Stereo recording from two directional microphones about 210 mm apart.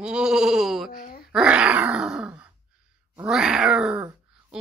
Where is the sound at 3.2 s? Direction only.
5° right (ahead or behind).